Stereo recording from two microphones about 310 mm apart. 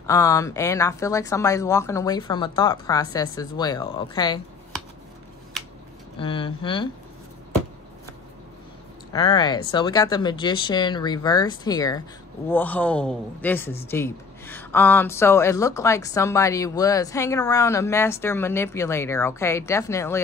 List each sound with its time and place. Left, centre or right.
0.0 s speech: centre
6.1 s speech: centre
9.1 s a man's voice: centre